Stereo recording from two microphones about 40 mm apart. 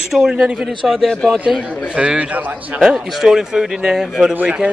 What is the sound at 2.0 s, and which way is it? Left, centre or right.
Speech, right.